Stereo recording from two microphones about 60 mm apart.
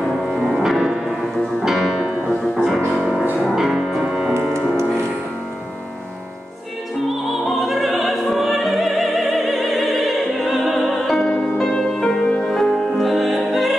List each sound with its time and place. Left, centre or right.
0.1 s music: centre
7.4 s music: centre
11.1 s music: centre